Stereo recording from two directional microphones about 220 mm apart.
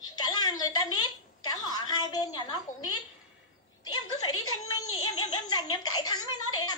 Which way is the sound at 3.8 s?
20° left (ahead or behind).